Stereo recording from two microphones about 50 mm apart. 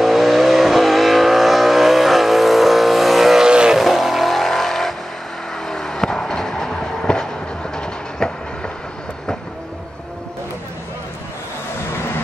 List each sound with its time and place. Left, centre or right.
0.0 s vehicle: centre
3.4 s vehicle: centre
3.8 s vehicle: centre
7.7 s train: centre